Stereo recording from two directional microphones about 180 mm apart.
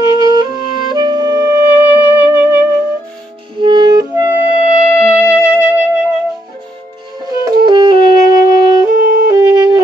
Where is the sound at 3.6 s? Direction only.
25° right (ahead or behind).